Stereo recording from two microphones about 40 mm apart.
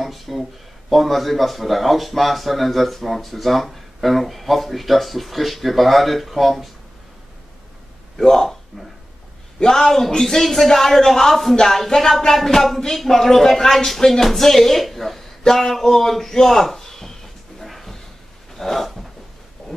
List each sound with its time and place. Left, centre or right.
0.0 s speech: centre
8.2 s a man's voice: centre
9.6 s a man's voice: centre
18.5 s a sound: centre